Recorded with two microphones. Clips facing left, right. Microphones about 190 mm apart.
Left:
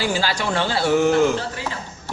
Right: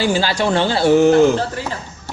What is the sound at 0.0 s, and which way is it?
Speech, 25° right (ahead or behind).